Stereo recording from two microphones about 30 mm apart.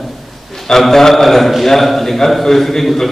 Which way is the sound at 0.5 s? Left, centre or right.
Centre.